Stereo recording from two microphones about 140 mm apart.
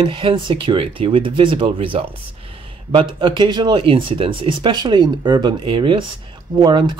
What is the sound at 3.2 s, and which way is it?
Speech, 35° right (ahead or behind).